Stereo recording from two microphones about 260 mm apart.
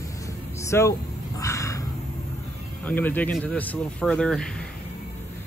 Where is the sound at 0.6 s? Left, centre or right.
Centre.